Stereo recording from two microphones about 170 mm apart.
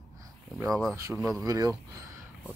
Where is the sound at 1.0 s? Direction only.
15° right (ahead or behind).